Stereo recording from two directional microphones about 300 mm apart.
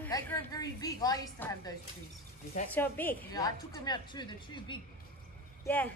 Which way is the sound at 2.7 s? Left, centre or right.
Centre.